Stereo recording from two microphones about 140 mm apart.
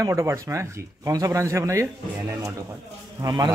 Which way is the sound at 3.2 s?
30° right (ahead or behind).